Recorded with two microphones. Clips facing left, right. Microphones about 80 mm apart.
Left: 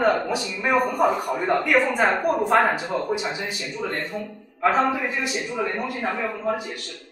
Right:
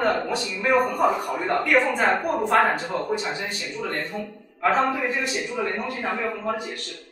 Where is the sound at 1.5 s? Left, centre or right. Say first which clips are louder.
Even; centre.